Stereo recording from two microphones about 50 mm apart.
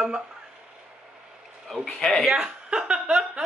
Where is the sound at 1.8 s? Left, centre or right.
Centre.